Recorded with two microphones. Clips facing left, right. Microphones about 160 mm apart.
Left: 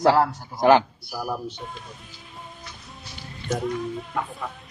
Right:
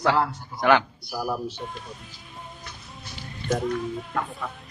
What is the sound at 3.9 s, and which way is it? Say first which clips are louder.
Speech: even; centre (ahead or behind).